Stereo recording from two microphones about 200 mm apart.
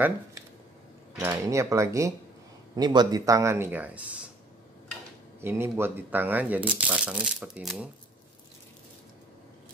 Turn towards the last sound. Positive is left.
turn(degrees=-5)  # may be behind; listen again after turning